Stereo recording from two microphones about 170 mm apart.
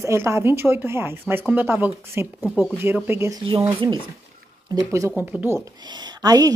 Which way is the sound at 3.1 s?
15° right (ahead or behind).